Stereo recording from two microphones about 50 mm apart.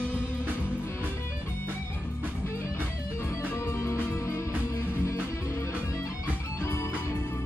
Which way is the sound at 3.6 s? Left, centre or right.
Left.